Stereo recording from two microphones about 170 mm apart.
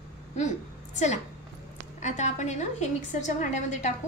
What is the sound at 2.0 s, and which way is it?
A woman's voice, 45° left (ahead or behind).